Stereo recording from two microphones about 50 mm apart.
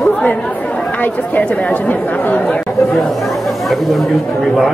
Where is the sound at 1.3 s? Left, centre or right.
Left.